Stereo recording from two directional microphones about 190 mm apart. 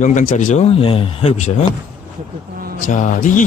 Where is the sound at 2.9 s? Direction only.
45° left (ahead or behind).